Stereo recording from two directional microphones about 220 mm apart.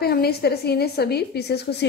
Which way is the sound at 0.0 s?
45° left (ahead or behind).